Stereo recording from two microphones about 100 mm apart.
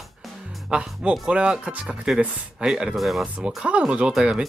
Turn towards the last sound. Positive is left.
turn(degrees=-10)  # may be behind; listen again after turning